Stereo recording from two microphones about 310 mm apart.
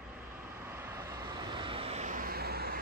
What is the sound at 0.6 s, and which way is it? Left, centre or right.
Vehicle, centre.